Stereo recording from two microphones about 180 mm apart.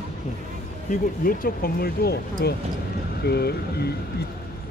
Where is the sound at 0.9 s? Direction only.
55° left (ahead or behind).